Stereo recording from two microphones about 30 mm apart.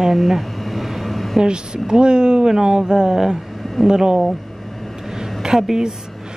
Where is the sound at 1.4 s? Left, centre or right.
Right.